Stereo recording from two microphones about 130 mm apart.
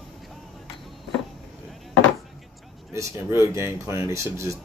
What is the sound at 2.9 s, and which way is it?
Speech, 20° right (ahead or behind).